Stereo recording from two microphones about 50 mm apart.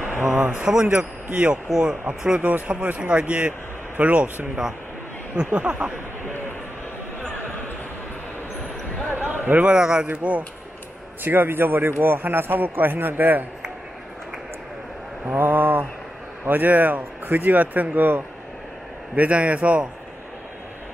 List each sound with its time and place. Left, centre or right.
0.5 s speech: centre
5.3 s speech: right
9.1 s a sound: right
9.7 s speech: centre
10.0 s speech: right
11.2 s speech: right
15.2 s speech: right
19.1 s speech: right